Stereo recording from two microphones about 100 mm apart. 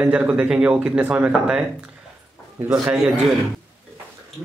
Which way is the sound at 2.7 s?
10° right (ahead or behind).